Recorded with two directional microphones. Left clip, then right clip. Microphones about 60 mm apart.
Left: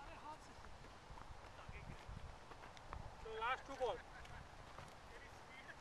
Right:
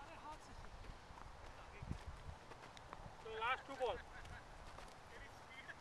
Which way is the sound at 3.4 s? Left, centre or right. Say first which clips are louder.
Right 1 dB; centre.